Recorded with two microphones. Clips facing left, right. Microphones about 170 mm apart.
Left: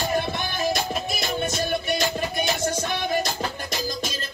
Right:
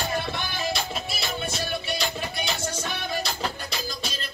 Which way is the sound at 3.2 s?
45° left (ahead or behind).